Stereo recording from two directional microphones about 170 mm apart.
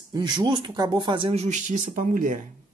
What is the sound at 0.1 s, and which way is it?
Speech, 25° right (ahead or behind).